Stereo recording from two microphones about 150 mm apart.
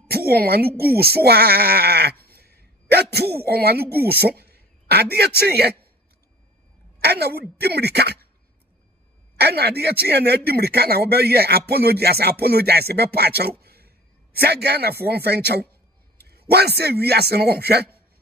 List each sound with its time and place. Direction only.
0.1 s speech: 90° right
7.0 s speech: 90° right
9.4 s speech: 90° right